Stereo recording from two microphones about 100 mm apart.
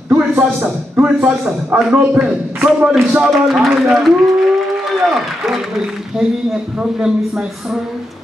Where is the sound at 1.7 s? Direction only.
5° right (ahead or behind).